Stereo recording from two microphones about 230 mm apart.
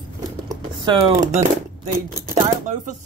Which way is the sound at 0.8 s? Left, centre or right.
Right.